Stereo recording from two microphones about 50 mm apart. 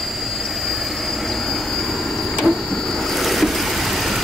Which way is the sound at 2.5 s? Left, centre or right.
Centre.